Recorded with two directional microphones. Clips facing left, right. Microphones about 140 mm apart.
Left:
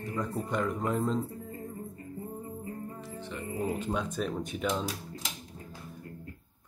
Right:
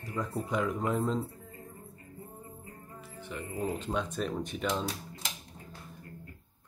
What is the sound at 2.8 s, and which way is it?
Music, 40° left (ahead or behind).